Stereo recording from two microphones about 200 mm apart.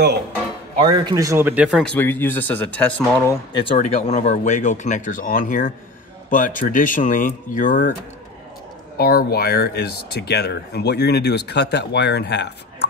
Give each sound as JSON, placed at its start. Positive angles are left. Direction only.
{"t": 0.8, "sound": "speech", "side_deg": -20}
{"t": 3.5, "sound": "speech", "side_deg": 30}
{"t": 8.9, "sound": "speech", "side_deg": 50}